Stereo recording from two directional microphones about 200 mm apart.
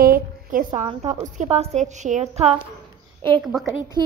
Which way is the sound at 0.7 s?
30° right (ahead or behind).